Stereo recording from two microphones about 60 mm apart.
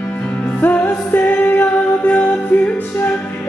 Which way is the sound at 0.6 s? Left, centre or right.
Left.